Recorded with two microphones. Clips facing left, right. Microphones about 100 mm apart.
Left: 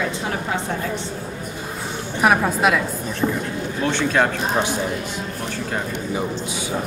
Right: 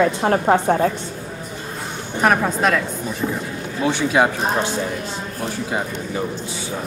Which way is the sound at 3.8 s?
10° right (ahead or behind).